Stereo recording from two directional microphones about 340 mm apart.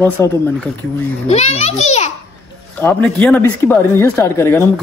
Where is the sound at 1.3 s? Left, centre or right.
Centre.